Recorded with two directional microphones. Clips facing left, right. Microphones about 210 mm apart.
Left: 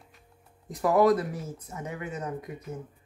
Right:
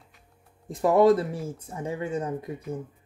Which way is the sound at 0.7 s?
25° right (ahead or behind).